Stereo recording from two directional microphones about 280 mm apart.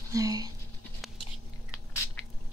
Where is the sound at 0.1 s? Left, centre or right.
Centre.